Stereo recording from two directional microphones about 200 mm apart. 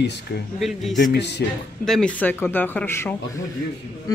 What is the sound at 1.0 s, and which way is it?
Speech, 55° left (ahead or behind).